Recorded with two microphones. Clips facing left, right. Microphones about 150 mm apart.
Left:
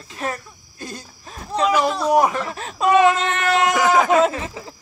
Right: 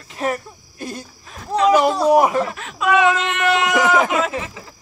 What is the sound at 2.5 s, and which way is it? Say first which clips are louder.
Speech: left 2 dB; 35° left (ahead or behind).